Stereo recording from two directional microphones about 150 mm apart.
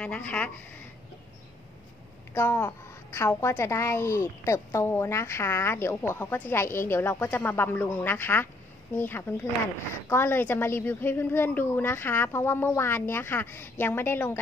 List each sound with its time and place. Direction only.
0.0 s a woman's voice: 10° left (ahead or behind)
2.3 s a woman's voice: 15° left (ahead or behind)